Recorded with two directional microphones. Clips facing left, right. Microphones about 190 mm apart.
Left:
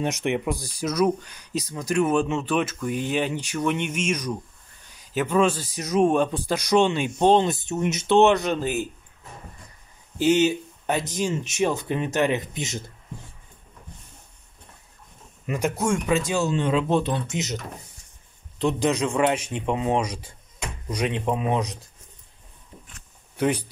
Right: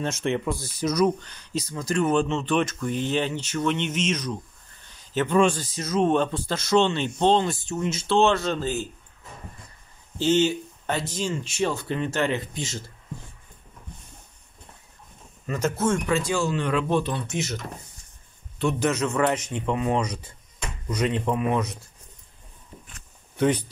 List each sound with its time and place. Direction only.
0.0 s speech: 15° left (ahead or behind)
5.8 s speech: 15° left (ahead or behind)
10.1 s speech: 15° left (ahead or behind)
15.4 s speech: 15° left (ahead or behind)
18.6 s speech: 15° left (ahead or behind)
23.3 s speech: 10° left (ahead or behind)